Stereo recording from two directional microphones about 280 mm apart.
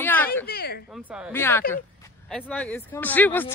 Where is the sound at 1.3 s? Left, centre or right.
Centre.